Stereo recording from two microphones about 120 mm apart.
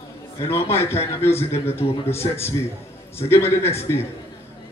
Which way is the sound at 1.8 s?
40° left (ahead or behind).